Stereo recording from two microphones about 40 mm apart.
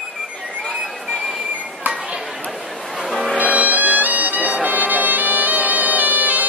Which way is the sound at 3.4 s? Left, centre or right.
Right.